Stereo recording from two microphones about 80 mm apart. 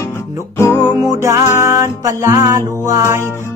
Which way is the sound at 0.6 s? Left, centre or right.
Left.